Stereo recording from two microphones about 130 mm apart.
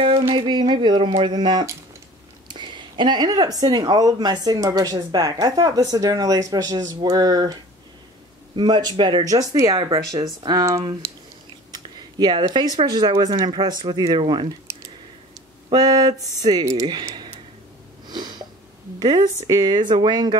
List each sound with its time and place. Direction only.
0.3 s speech: 35° right (ahead or behind)
8.5 s speech: 35° right (ahead or behind)
11.7 s a sound: 35° right (ahead or behind)
12.8 s speech: 30° right (ahead or behind)
15.7 s speech: 30° right (ahead or behind)
18.0 s sniff: 35° right (ahead or behind)
19.4 s speech: 35° right (ahead or behind)